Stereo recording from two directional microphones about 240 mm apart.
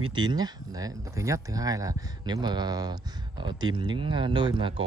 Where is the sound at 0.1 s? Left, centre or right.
Centre.